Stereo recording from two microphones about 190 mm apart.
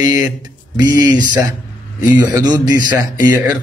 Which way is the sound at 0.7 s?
20° right (ahead or behind).